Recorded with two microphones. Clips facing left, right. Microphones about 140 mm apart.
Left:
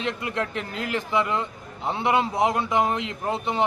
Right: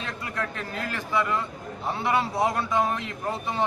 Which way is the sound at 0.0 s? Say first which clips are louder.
Left 5 dB; 20° left (ahead or behind).